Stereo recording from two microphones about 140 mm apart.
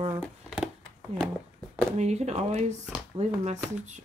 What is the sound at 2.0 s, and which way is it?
Speech, 55° right (ahead or behind).